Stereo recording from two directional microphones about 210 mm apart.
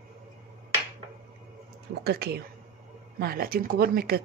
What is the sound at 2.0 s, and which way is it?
Speech, 50° right (ahead or behind).